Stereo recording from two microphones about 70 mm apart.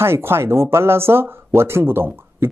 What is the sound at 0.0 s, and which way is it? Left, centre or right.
Speech, right.